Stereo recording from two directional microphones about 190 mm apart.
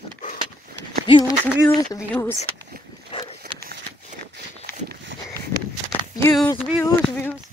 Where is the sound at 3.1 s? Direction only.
30° left (ahead or behind).